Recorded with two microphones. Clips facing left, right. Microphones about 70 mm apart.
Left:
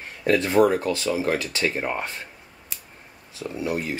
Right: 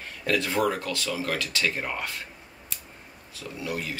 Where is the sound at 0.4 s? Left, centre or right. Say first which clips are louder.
Left 9 dB; left.